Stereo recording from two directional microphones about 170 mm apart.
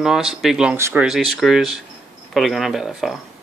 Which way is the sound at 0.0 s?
5° right (ahead or behind).